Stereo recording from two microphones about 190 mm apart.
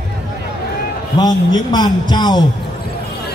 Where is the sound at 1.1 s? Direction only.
20° left (ahead or behind).